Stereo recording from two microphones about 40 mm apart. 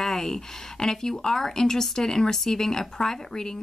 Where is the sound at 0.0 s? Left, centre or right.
Centre.